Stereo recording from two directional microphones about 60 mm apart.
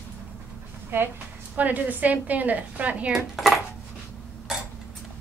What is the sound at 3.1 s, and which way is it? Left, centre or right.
Dishes, centre.